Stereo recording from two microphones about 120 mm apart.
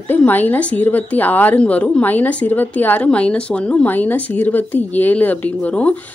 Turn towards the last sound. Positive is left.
turn(degrees=10)  # may be behind; listen again after turning